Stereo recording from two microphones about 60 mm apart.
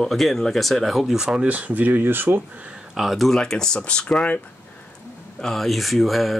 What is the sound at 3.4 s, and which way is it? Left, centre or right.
Speech, centre.